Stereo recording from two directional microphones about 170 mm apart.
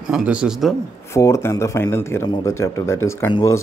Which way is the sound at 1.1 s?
15° left (ahead or behind).